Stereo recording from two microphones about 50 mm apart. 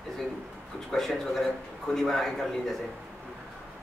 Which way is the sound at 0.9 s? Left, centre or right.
Centre.